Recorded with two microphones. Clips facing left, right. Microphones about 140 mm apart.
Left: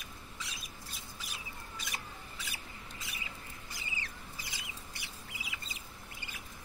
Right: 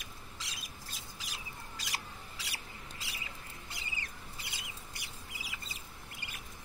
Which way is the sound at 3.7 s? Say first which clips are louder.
Left 1 dB; 60° right (ahead or behind).